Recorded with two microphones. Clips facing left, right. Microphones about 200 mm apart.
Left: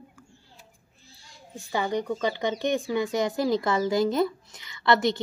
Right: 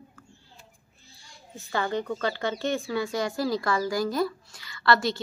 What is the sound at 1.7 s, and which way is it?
A woman's voice, 15° left (ahead or behind).